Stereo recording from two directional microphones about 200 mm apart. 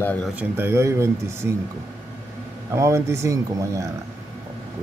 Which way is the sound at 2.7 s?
15° right (ahead or behind).